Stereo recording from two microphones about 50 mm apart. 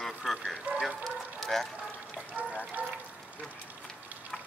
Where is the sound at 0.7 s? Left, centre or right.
Right.